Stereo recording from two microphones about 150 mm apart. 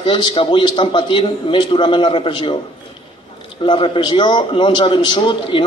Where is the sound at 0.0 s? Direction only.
35° left (ahead or behind).